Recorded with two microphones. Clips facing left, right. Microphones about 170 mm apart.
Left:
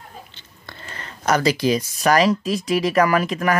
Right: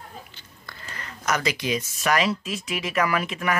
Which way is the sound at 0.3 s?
25° left (ahead or behind).